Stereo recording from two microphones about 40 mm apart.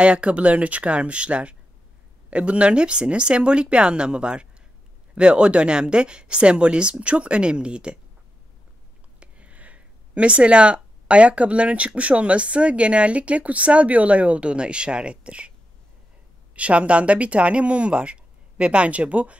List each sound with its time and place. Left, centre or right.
0.0 s a woman's voice: right
9.2 s speech: right
16.5 s speech: right